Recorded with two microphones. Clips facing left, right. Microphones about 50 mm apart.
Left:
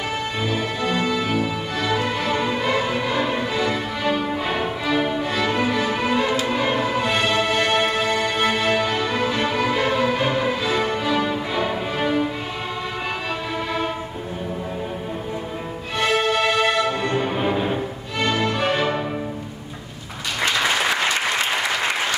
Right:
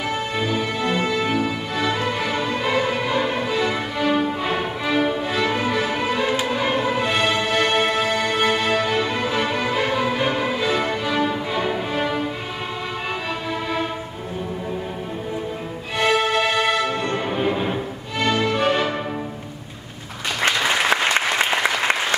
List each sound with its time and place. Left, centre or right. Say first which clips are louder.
0.4 s music: right 1 dB; centre
16.0 s music: right 1 dB; centre